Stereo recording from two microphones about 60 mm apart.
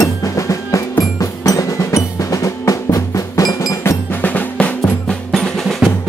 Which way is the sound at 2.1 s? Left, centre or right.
Left.